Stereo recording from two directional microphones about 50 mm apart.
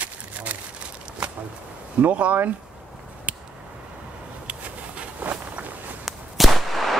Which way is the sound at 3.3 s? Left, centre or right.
Right.